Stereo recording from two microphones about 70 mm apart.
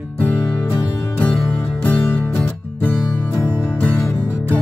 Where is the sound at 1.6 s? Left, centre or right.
Left.